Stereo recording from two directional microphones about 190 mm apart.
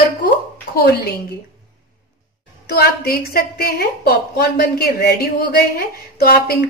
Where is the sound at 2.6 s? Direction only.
55° left (ahead or behind).